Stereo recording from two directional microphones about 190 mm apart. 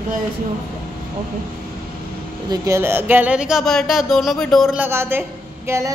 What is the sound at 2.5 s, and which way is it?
A woman's voice, 15° right (ahead or behind).